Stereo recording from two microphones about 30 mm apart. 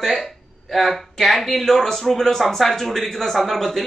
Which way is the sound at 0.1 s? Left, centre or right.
Centre.